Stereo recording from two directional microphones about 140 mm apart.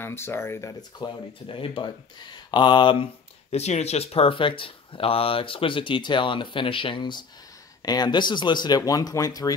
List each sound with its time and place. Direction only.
0.0 s speech: 15° left (ahead or behind); by 3.1 s 35° left (ahead or behind)
3.5 s speech: 50° left (ahead or behind); by 9.5 s 25° left (ahead or behind)